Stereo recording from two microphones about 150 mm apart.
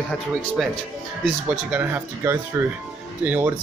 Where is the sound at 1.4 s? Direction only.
10° right (ahead or behind).